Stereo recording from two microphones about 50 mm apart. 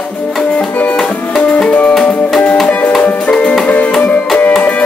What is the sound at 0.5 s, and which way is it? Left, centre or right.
Music, left.